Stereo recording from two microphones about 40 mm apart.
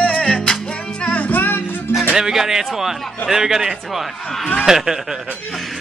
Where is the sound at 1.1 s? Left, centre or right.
Left.